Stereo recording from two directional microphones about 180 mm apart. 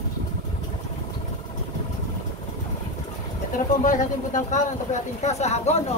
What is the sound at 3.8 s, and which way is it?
Speech, 45° left (ahead or behind).